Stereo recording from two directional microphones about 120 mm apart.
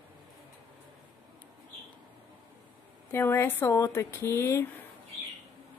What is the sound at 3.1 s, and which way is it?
Speech, 20° left (ahead or behind).